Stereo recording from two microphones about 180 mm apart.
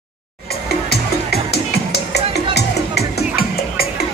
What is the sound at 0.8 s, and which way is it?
Music, 65° left (ahead or behind).